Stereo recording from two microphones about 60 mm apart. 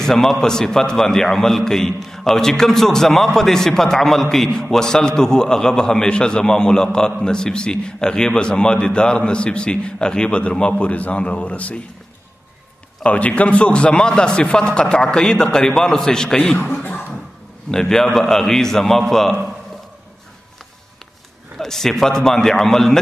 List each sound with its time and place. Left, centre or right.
0.0 s a man's voice: centre; by 11.8 s left
13.0 s a man's voice: left
17.6 s a man's voice: centre
21.5 s a man's voice: centre